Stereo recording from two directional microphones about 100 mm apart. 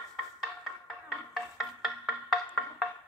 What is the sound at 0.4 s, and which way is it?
Music, centre (ahead or behind).